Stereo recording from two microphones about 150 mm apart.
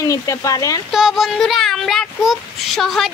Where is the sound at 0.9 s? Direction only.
Centre (ahead or behind).